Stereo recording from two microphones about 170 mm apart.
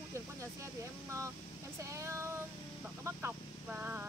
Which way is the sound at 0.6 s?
15° right (ahead or behind).